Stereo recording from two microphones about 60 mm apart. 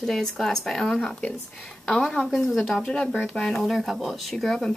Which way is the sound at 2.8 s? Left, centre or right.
Centre.